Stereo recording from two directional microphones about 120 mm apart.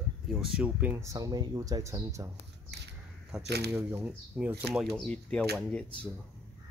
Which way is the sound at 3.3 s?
5° right (ahead or behind).